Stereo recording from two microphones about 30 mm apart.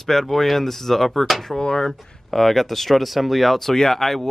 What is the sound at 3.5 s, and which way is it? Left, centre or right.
Speech, centre.